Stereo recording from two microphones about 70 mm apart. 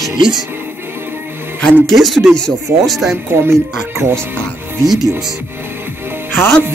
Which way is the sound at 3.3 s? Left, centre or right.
Right.